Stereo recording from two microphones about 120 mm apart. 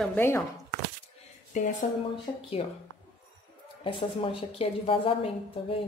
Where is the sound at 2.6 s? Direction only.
55° left (ahead or behind).